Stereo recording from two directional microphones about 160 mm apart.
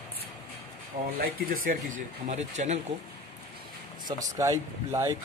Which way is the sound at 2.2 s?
45° right (ahead or behind).